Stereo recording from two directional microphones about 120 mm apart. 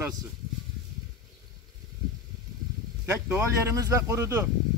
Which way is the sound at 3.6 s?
25° right (ahead or behind).